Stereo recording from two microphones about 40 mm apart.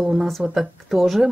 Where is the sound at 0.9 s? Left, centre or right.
Centre.